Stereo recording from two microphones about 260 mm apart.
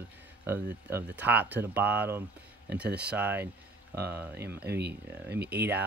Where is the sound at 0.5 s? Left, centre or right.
Centre.